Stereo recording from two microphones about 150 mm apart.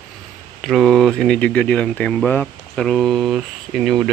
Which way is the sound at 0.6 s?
Centre (ahead or behind).